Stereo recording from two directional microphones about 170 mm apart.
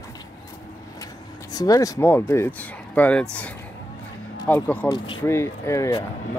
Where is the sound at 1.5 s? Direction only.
20° left (ahead or behind).